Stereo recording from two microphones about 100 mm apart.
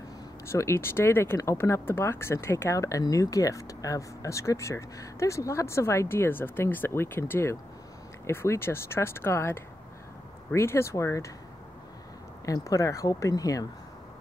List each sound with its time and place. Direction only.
0.5 s speech: 30° left (ahead or behind)
12.6 s speech: 30° left (ahead or behind)